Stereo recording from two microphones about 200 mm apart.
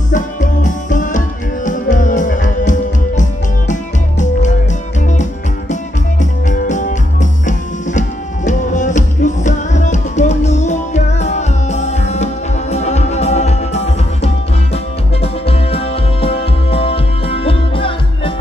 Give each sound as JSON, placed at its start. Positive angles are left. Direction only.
{"t": 0.1, "sound": "music", "side_deg": 40}
{"t": 6.5, "sound": "music", "side_deg": 40}
{"t": 15.4, "sound": "music", "side_deg": 30}